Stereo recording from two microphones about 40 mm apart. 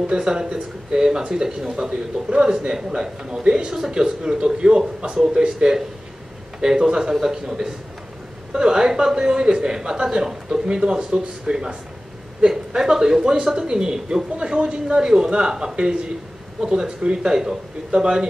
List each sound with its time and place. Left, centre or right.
0.0 s speech: centre
2.2 s a man's voice: right